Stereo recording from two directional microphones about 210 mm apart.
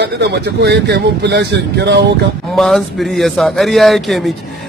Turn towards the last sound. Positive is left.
turn(degrees=0)  # may be behind; listen again after turning